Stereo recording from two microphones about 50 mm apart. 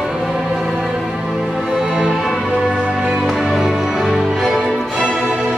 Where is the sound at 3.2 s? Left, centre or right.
Centre.